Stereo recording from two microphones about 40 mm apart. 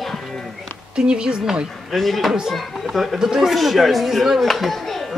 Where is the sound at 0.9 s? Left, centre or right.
Right.